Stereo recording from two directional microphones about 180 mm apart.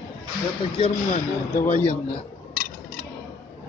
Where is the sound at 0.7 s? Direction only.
35° left (ahead or behind).